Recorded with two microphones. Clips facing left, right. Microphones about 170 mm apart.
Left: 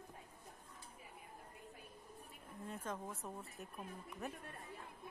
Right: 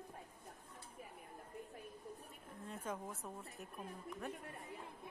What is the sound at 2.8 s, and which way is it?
Speech, 5° right (ahead or behind).